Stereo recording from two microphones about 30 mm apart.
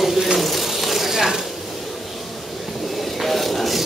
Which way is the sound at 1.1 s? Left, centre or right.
Centre.